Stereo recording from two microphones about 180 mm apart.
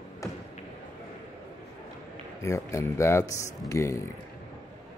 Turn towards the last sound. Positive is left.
turn(degrees=15)  # may be behind; listen again after turning